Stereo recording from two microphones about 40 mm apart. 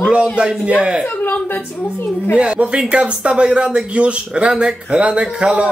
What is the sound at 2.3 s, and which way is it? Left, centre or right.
Speech, right.